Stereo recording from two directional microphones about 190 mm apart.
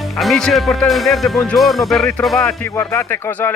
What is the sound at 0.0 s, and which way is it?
Speech, centre (ahead or behind).